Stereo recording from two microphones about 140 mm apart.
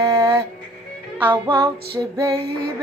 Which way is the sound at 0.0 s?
20° right (ahead or behind).